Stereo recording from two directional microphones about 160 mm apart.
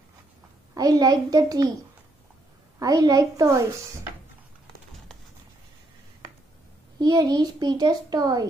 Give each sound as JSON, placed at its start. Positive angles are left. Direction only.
{"t": 0.7, "sound": "a child's voice", "side_deg": -25}
{"t": 2.8, "sound": "a child's voice", "side_deg": -25}
{"t": 7.0, "sound": "a child's voice", "side_deg": -25}